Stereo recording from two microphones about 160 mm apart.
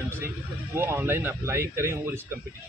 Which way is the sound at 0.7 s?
15° right (ahead or behind).